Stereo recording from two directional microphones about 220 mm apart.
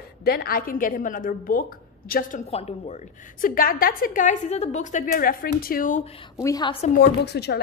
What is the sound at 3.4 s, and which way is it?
A woman's voice, 40° left (ahead or behind).